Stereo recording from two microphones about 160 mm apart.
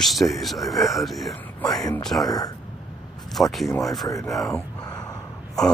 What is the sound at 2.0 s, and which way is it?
Speech, centre (ahead or behind).